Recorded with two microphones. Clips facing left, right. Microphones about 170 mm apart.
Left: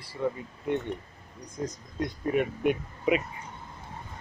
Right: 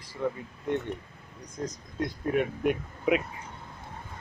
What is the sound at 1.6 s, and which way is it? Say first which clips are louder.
Speech: even; 5° left (ahead or behind).